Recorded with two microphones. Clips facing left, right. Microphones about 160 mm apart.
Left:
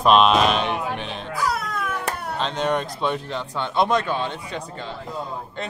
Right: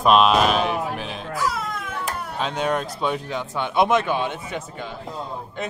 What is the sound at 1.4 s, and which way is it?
Music, 70° left (ahead or behind).